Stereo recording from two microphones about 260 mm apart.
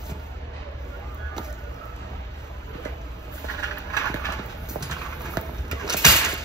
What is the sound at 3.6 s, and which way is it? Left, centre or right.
Vehicle, centre.